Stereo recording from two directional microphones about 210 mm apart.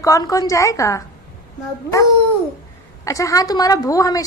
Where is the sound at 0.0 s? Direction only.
15° left (ahead or behind).